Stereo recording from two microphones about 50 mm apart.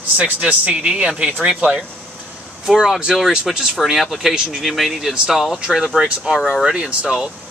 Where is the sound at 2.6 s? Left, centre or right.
Centre.